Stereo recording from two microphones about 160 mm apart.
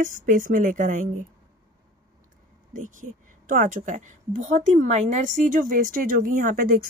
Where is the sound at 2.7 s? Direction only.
55° right (ahead or behind).